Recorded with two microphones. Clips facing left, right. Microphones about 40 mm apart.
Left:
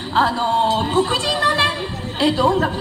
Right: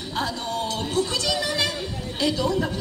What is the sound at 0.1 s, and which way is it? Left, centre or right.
A woman's voice, left.